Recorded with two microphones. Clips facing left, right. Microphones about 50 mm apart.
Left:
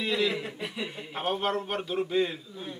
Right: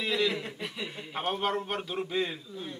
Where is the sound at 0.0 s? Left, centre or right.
Centre.